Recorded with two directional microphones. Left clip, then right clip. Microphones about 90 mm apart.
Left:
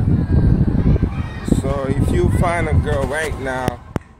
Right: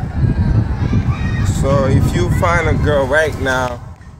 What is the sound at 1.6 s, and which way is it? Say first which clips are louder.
Speech: right 10 dB; 15° left (ahead or behind).